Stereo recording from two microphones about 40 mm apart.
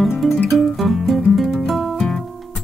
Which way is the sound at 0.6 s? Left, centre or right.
Centre.